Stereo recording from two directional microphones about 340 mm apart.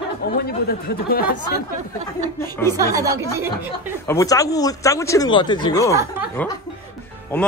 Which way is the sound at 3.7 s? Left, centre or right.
Centre.